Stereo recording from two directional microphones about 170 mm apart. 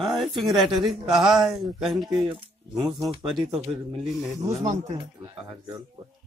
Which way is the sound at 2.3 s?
25° right (ahead or behind).